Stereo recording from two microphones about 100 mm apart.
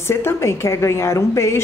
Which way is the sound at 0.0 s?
25° left (ahead or behind).